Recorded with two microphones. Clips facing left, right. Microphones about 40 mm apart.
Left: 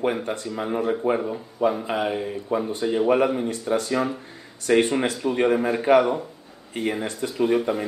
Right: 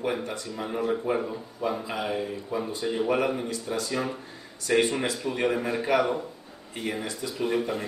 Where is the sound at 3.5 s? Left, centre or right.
Left.